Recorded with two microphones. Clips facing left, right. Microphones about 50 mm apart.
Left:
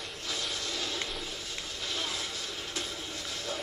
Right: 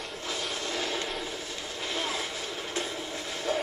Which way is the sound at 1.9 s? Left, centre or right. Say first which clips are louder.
Right 4 dB; right.